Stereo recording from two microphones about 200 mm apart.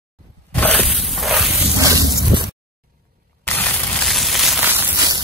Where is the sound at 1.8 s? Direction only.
15° right (ahead or behind).